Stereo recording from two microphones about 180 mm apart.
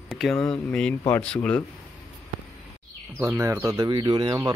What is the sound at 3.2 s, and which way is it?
Speech, 15° right (ahead or behind).